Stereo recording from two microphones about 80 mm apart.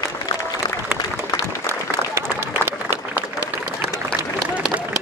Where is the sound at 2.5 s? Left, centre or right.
Right.